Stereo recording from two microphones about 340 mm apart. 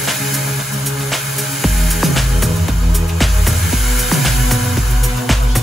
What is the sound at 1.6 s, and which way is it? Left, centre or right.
Music, centre.